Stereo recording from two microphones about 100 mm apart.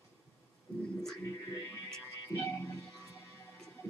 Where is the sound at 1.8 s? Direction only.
5° left (ahead or behind).